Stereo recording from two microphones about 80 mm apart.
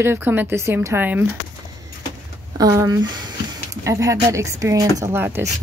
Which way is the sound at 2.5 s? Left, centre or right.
Right.